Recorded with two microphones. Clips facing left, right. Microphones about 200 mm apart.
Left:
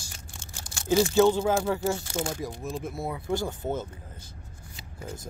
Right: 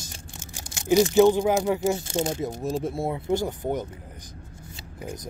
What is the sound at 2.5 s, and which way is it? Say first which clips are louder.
Speech: right 6 dB; 40° right (ahead or behind).